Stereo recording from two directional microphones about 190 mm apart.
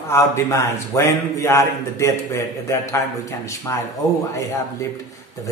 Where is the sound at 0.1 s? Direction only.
15° left (ahead or behind).